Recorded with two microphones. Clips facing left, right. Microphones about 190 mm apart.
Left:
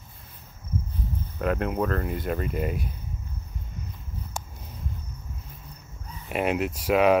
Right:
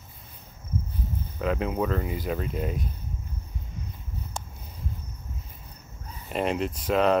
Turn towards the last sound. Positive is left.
turn(degrees=10)  # may be behind; listen again after turning